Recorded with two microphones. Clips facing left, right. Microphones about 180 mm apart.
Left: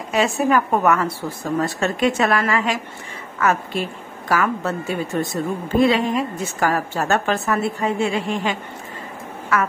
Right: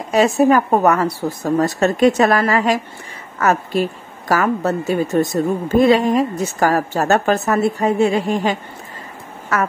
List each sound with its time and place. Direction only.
0.1 s a woman's voice: 40° right (ahead or behind)